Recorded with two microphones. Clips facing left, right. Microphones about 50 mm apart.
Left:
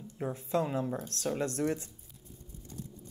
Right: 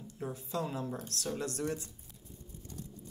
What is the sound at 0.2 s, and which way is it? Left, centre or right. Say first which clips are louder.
Speech: left 5 dB; left.